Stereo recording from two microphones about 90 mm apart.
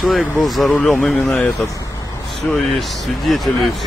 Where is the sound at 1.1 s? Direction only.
25° left (ahead or behind).